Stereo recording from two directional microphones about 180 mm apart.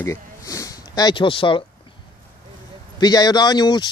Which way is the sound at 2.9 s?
25° left (ahead or behind).